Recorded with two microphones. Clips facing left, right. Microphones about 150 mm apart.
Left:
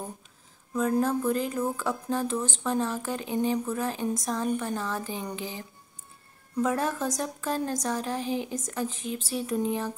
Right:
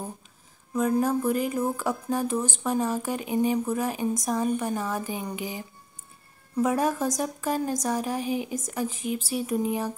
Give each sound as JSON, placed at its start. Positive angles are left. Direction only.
{"t": 0.7, "sound": "speech", "side_deg": -10}